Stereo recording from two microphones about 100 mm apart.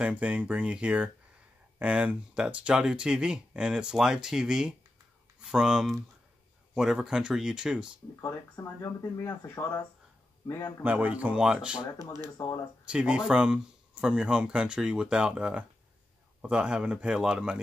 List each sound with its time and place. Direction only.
0.0 s speech: 15° right (ahead or behind)
8.8 s speech: 25° left (ahead or behind)
10.4 s a man's voice: 30° left (ahead or behind)
10.8 s speech: 15° right (ahead or behind)
12.0 s speech: 40° right (ahead or behind)
12.4 s speech: 30° left (ahead or behind)
12.8 s speech: 10° right (ahead or behind)